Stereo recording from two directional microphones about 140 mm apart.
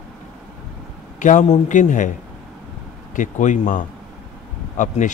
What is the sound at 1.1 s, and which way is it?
Speech, 60° left (ahead or behind).